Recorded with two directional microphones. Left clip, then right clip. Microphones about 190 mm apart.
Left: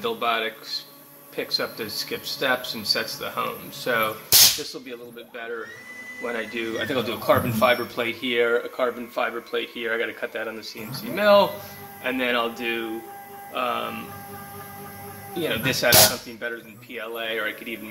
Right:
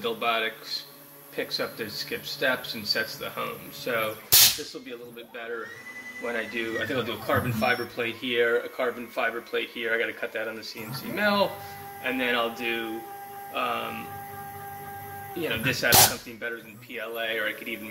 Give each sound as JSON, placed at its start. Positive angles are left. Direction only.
{"t": 0.0, "sound": "speech", "side_deg": 15}
{"t": 6.2, "sound": "a man's voice", "side_deg": 20}
{"t": 15.4, "sound": "speech", "side_deg": 15}